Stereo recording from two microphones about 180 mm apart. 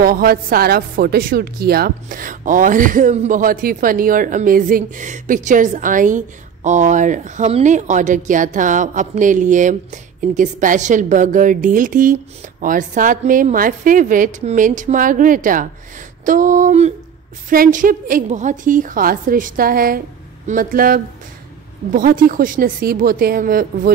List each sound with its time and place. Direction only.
0.0 s a woman's voice: 55° right (ahead or behind)